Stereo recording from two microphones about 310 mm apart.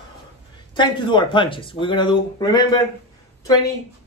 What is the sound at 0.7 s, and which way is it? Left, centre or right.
Speech, centre.